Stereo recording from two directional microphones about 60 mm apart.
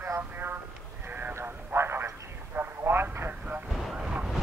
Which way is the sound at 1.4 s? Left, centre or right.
Right.